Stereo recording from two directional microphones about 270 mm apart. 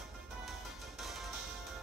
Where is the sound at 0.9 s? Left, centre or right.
Centre.